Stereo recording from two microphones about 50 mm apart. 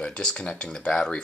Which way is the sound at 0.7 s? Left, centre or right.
Centre.